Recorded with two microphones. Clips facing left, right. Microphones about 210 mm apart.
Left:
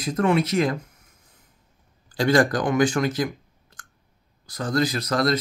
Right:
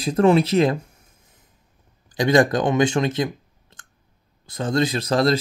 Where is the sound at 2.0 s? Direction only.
20° right (ahead or behind).